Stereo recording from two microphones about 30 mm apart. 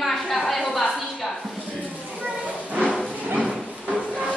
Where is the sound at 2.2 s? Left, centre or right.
Right.